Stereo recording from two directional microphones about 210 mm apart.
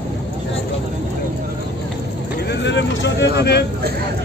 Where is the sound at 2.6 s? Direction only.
55° left (ahead or behind).